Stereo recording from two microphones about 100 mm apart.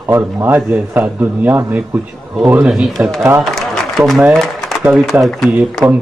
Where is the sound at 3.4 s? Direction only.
Centre (ahead or behind).